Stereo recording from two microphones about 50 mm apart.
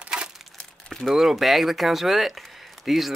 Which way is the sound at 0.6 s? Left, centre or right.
Centre.